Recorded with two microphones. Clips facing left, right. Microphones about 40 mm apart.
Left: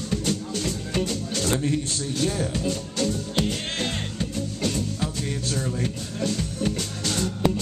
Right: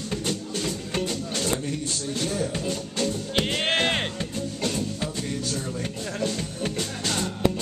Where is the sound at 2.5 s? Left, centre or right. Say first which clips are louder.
Left 2 dB; centre.